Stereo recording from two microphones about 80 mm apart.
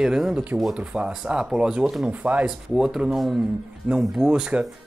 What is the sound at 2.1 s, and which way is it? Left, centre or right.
Speech, centre.